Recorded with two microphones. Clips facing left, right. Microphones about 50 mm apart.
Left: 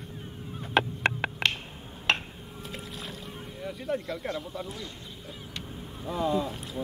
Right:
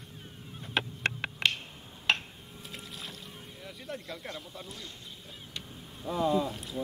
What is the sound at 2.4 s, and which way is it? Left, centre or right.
Boat, centre.